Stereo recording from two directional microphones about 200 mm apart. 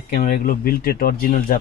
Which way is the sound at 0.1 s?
45° left (ahead or behind).